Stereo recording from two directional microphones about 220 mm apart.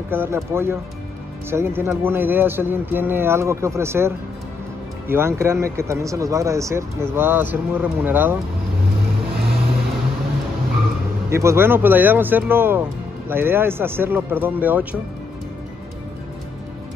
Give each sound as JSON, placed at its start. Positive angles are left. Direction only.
{"t": 0.1, "sound": "speech", "side_deg": -10}
{"t": 11.2, "sound": "speech", "side_deg": -10}